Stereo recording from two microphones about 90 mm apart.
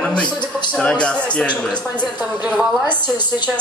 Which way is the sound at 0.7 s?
10° left (ahead or behind).